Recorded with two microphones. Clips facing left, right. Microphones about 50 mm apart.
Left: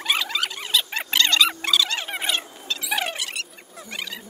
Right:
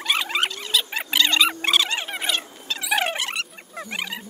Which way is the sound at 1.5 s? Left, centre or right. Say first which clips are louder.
Right 1 dB; right.